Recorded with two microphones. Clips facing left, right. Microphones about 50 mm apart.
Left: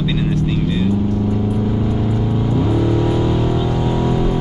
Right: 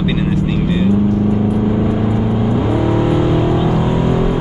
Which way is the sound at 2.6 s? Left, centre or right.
Right.